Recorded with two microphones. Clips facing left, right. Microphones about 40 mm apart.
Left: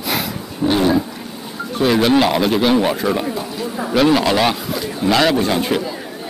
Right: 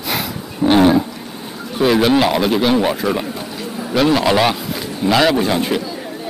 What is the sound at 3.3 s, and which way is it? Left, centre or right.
Chatter, centre.